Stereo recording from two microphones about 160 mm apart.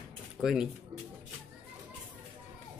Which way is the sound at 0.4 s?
5° right (ahead or behind).